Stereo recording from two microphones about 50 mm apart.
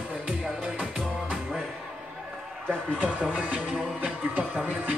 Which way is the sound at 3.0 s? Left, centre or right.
Right.